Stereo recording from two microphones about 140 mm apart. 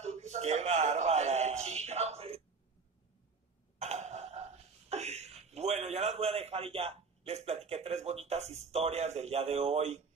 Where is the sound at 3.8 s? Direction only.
55° right (ahead or behind).